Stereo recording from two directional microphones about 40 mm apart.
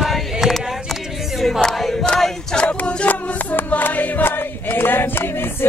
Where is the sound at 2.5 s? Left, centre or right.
Left.